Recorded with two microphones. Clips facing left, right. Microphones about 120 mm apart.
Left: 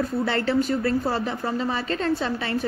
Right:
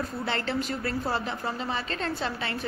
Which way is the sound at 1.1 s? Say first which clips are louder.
Left 4 dB; 40° left (ahead or behind).